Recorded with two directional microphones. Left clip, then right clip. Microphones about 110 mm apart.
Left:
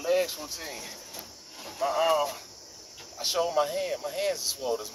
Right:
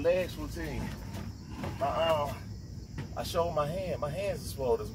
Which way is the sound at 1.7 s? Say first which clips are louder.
Left 4 dB; 5° left (ahead or behind).